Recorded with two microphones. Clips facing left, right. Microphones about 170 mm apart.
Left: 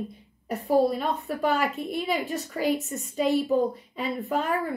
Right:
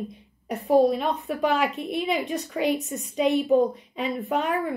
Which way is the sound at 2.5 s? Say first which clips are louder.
Right 1 dB; 20° right (ahead or behind).